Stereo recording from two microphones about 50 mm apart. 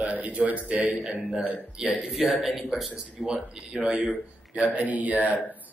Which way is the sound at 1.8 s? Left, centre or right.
Centre.